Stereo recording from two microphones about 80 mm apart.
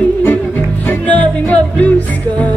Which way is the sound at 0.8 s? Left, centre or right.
Centre.